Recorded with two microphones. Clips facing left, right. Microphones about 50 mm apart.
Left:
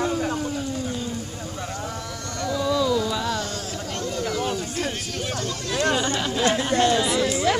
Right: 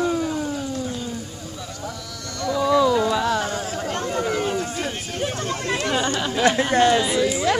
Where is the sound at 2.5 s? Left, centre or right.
Centre.